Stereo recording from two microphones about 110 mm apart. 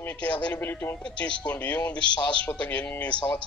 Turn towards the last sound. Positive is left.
turn(degrees=10)  # may be behind; listen again after turning